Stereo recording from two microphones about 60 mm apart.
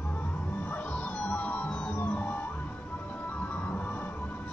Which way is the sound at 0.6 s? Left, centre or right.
Left.